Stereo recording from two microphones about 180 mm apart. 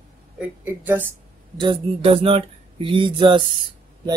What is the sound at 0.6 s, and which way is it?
Speech, 10° right (ahead or behind).